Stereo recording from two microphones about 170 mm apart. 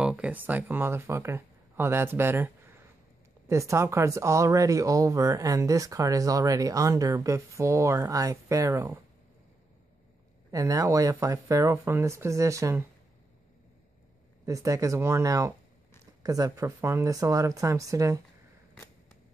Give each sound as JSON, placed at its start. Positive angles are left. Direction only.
{"t": 0.0, "sound": "speech", "side_deg": -5}
{"t": 10.5, "sound": "speech", "side_deg": -20}
{"t": 14.4, "sound": "speech", "side_deg": -20}